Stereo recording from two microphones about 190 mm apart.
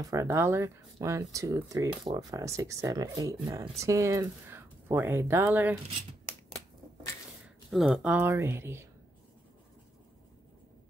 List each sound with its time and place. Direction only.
0.0 s speech: 15° right (ahead or behind)
7.4 s speech: 5° right (ahead or behind)